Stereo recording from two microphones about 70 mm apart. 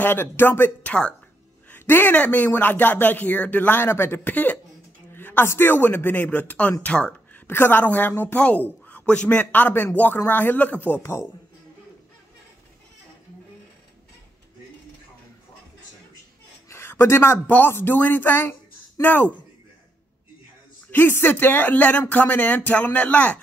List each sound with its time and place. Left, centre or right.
0.0 s speech: left; by 7.4 s centre
7.4 s speech: left
11.0 s speech: left
16.6 s a sound: left
17.5 s speech: left
20.9 s speech: left